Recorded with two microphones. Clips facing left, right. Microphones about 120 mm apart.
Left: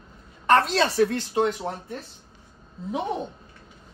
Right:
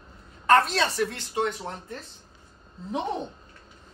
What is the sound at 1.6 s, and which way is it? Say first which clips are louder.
Speech: left 4 dB; 5° left (ahead or behind).